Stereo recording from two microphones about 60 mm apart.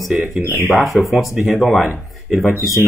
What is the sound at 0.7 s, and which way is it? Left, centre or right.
Speech, centre.